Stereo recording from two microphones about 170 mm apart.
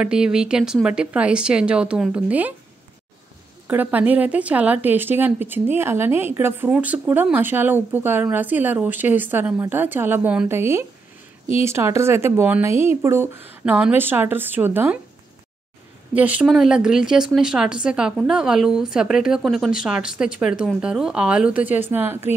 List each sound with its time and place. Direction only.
0.0 s speech: 5° right (ahead or behind)
3.6 s speech: 10° right (ahead or behind)
16.1 s speech: 10° right (ahead or behind)